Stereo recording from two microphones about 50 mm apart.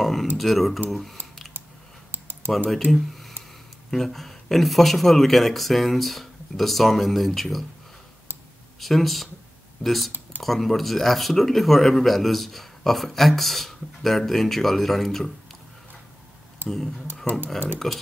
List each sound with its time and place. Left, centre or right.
0.0 s a sound: centre
0.4 s speech: centre
2.1 s typing: right
2.7 s speech: centre
8.7 s speech: centre
16.6 s speech: centre